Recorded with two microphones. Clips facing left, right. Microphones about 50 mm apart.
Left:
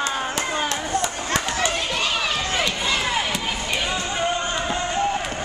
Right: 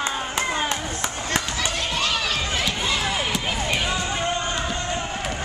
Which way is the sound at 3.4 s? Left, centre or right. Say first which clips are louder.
Right 1 dB; centre.